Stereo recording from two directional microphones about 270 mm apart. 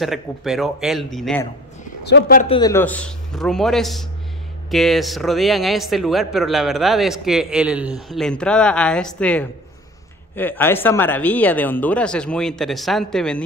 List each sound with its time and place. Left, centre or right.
0.0 s speech: centre
2.0 s a man's voice: left
2.4 s speech: centre